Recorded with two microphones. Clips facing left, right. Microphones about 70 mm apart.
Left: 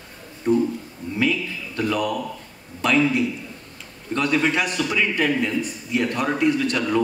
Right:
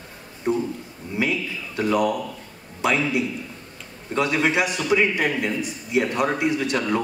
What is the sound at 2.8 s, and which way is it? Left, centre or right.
A man's voice, centre.